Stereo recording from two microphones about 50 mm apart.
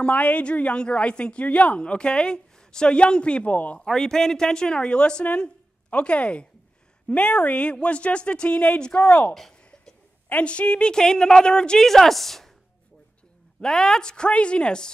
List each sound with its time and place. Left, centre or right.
0.0 s a woman's voice: left
3.8 s a woman's voice: centre; by 9.3 s left
9.3 s a woman's voice: centre
10.3 s a woman's voice: left
11.9 s a woman's voice: centre
13.6 s a woman's voice: centre